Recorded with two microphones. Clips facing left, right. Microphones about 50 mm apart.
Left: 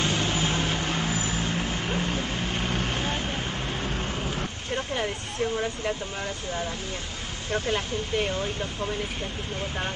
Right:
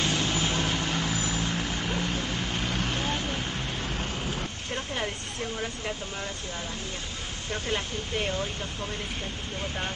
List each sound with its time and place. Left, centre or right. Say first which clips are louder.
0.0 s vehicle: left 1 dB; left
4.4 s a sound: left 3 dB; centre
7.7 s speech: left 3 dB; centre